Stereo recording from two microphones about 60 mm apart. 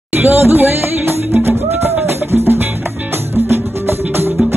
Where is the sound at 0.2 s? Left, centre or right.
Right.